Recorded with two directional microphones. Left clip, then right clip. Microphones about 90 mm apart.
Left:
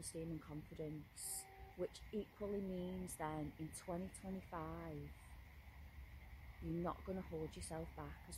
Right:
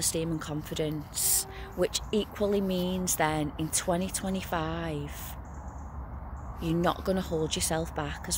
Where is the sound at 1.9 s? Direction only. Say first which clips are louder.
Right 19 dB; 10° left (ahead or behind).